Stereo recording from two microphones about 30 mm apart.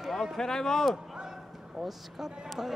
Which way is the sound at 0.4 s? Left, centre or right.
Centre.